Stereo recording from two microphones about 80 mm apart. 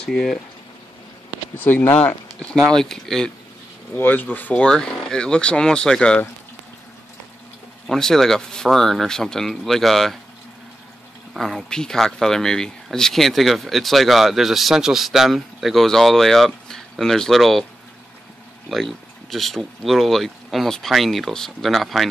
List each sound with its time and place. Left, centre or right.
0.0 s speech: centre
1.6 s speech: left
2.7 s speech: centre
3.9 s speech: left
4.6 s speech: centre
7.8 s speech: centre
11.3 s speech: centre
18.7 s speech: centre